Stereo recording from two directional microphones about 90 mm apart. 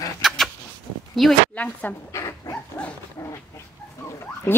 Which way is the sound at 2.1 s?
35° left (ahead or behind).